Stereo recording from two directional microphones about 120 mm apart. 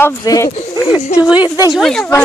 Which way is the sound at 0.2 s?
30° left (ahead or behind).